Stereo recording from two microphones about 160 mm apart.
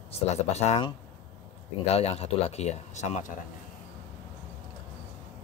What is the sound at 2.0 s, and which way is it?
Speech, 40° left (ahead or behind).